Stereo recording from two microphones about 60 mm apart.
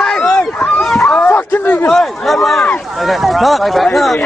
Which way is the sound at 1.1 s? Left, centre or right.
Left.